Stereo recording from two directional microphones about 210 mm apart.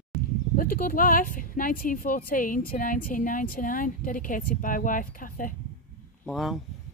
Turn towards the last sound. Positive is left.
turn(degrees=0)  # may be behind; listen again after turning